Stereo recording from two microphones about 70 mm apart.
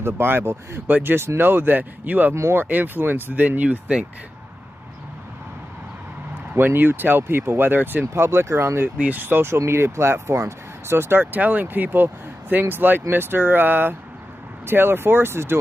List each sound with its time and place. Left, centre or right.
0.0 s speech: right
2.3 s speech: right
6.5 s speech: right